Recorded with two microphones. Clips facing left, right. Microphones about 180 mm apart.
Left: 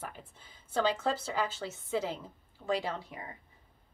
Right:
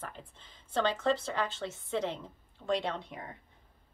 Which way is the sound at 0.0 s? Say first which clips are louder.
Even; 10° left (ahead or behind).